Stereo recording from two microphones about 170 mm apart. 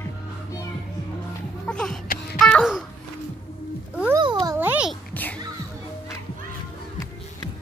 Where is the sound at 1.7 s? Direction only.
5° left (ahead or behind).